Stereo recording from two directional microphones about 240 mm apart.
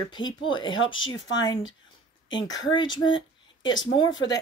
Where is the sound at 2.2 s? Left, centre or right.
Centre.